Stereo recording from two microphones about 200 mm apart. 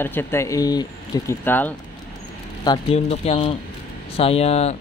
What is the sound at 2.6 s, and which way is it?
Speech, 20° left (ahead or behind).